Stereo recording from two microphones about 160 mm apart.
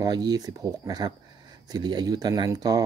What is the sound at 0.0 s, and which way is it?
Speech, 25° right (ahead or behind).